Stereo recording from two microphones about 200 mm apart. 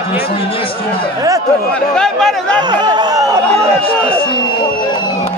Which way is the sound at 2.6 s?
20° right (ahead or behind).